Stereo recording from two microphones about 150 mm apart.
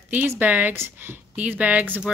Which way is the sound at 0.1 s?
10° right (ahead or behind).